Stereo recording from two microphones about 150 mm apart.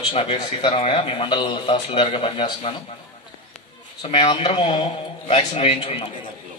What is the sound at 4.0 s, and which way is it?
A man's voice, 35° left (ahead or behind).